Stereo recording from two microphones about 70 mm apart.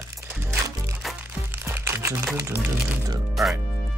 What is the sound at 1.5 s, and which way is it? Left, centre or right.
Music, right.